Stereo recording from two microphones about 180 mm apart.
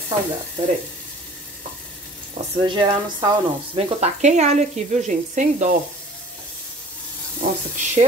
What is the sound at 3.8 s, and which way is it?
Speech, 35° right (ahead or behind).